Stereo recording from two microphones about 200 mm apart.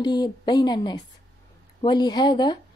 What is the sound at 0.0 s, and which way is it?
A woman's voice, 20° left (ahead or behind).